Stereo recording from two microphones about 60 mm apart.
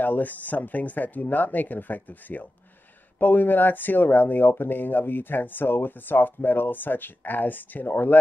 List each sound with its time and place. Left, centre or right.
0.0 s speech: left